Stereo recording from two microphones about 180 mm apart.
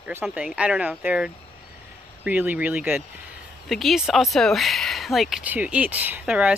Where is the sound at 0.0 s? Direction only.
10° right (ahead or behind).